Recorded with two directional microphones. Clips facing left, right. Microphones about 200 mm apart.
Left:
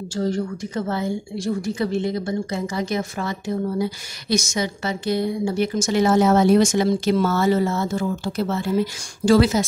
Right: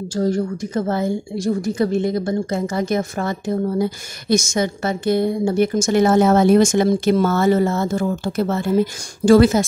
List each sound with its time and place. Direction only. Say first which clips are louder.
0.1 s a woman's voice: right 4 dB; 45° right (ahead or behind)